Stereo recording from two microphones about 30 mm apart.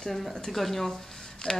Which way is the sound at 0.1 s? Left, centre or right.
Centre.